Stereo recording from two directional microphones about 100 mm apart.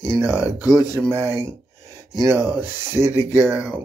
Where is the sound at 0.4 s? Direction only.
40° left (ahead or behind).